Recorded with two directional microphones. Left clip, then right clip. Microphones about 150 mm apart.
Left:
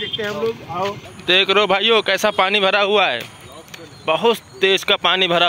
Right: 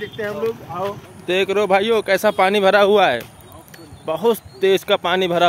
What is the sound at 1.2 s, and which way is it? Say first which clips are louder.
Speech: left 4 dB; 10° right (ahead or behind).